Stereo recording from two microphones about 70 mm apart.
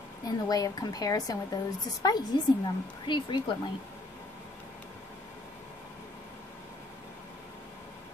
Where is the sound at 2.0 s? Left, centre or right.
Left.